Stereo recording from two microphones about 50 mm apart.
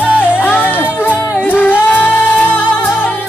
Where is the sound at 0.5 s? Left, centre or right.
Left.